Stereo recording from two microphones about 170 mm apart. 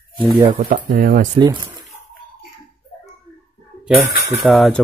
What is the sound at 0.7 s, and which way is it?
Speech, 55° right (ahead or behind).